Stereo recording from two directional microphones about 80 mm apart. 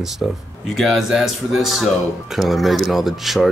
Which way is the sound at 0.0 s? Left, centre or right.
Centre.